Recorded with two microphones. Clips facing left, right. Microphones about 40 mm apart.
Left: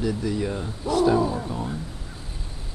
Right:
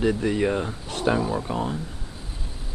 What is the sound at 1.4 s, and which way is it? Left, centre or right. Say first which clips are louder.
Speech: right 3 dB; right.